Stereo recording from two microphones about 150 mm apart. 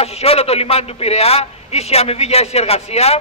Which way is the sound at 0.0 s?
40° left (ahead or behind).